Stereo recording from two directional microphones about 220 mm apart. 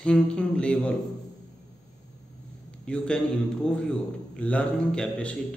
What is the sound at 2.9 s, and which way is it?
Speech, 5° left (ahead or behind).